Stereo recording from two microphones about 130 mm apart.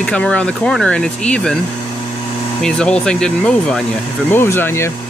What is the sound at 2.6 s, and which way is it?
Speech, 5° left (ahead or behind).